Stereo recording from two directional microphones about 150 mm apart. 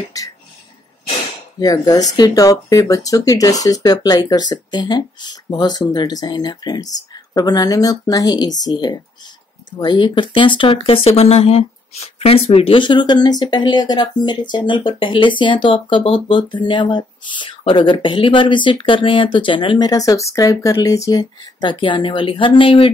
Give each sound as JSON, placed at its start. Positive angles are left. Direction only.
{"t": 1.6, "sound": "speech", "side_deg": 25}